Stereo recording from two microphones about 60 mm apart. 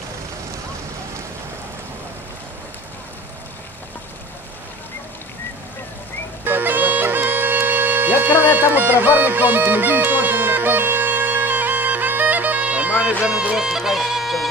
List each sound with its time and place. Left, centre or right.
6.4 s bagpipes: right
13.2 s music: centre
13.6 s bagpipes: centre